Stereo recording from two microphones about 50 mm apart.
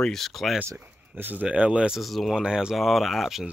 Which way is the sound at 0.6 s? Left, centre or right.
Right.